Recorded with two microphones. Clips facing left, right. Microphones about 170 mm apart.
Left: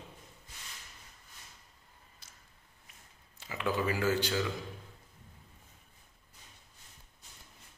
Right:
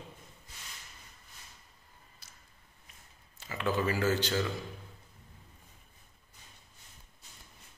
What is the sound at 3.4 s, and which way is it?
Speech, 15° left (ahead or behind).